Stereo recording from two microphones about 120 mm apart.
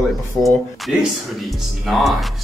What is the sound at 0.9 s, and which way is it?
Speech, centre (ahead or behind).